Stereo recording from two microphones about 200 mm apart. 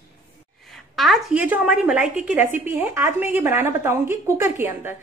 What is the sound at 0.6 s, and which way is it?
A woman's voice, centre (ahead or behind).